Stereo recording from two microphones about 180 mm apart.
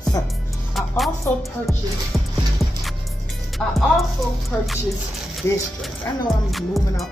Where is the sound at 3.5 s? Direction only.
Centre (ahead or behind).